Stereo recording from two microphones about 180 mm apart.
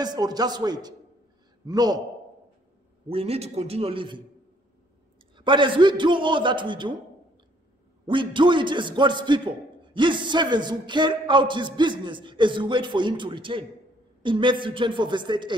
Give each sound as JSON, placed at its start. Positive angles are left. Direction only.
{"t": 0.0, "sound": "speech", "side_deg": -20}
{"t": 3.1, "sound": "a man's voice", "side_deg": -35}
{"t": 5.4, "sound": "speech", "side_deg": -25}
{"t": 8.1, "sound": "speech", "side_deg": -25}